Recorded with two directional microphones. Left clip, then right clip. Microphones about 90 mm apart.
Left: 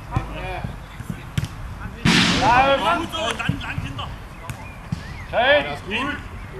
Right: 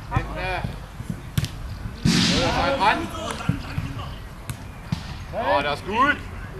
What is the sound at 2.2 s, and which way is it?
Whip, 20° right (ahead or behind).